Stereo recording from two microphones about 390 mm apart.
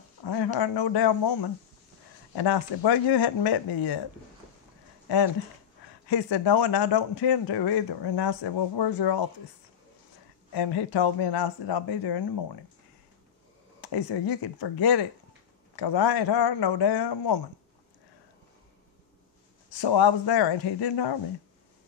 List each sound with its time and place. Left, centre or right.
0.2 s speech: left
2.3 s speech: left
6.0 s speech: left
10.5 s speech: left
13.7 s speech: left
19.7 s speech: left